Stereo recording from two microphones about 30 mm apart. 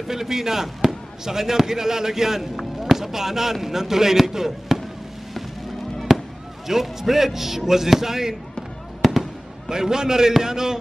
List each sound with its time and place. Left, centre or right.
0.1 s speech: centre
6.1 s fireworks: centre
6.7 s speech: centre
9.0 s fireworks: centre
9.7 s a man's voice: right